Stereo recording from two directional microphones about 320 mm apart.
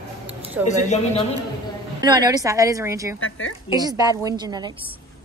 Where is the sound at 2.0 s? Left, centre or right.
Centre.